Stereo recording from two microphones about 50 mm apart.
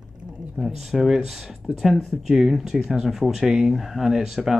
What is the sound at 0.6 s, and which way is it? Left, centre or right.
Speech, centre.